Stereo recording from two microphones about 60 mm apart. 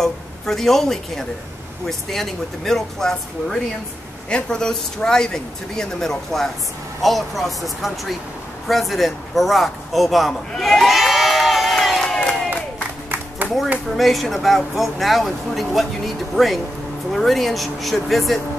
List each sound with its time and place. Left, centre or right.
0.0 s a woman's voice: centre
10.5 s crowd: centre
12.0 s crowd: centre
13.8 s speech: centre
17.1 s speech: centre